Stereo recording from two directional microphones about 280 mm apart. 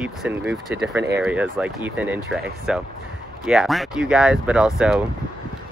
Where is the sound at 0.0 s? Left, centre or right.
Centre.